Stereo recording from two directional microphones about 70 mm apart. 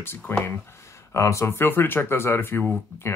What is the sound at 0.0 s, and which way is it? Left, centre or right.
Speech, left.